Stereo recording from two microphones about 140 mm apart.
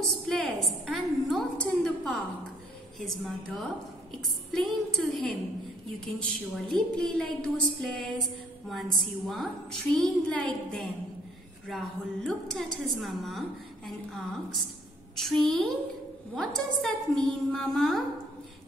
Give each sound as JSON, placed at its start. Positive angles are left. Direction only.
{"t": 0.3, "sound": "a woman's voice", "side_deg": 5}